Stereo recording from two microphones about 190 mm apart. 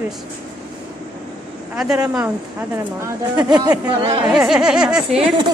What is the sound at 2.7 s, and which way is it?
Speech, 20° right (ahead or behind).